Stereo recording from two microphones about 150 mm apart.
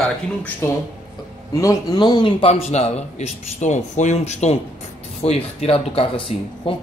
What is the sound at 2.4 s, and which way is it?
Speech, 45° left (ahead or behind).